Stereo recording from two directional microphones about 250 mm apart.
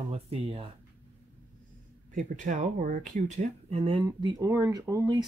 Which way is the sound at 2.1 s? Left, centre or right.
Right.